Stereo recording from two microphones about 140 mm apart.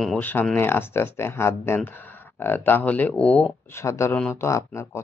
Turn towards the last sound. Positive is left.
turn(degrees=20)  # may be behind; listen again after turning